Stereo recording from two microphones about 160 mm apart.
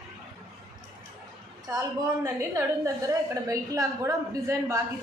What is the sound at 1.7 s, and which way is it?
A woman's voice, 20° right (ahead or behind).